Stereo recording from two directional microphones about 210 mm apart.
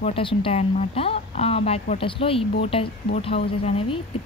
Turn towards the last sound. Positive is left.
turn(degrees=25)  # may be behind; listen again after turning